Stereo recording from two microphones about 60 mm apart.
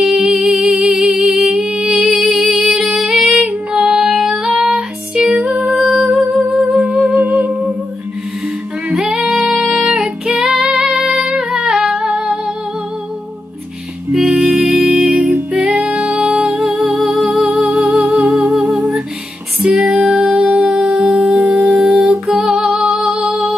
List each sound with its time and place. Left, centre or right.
0.0 s music: centre
5.7 s humming: centre
6.1 s music: centre
7.2 s humming: right
8.9 s female singing: centre
9.8 s music: centre
11.1 s music: centre
11.7 s humming: centre
14.1 s music: centre
16.3 s music: centre
20.4 s music: centre
22.3 s music: centre
22.6 s music: centre